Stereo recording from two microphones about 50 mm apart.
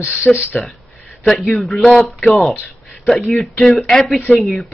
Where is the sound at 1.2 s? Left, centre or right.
Centre.